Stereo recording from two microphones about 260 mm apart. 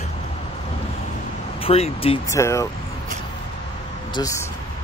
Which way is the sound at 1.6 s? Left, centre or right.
Left.